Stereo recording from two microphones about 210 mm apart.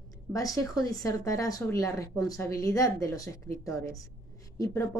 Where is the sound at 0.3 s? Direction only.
15° left (ahead or behind).